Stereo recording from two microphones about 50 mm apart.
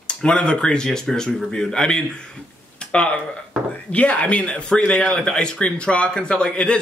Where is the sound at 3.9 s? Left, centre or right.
Left.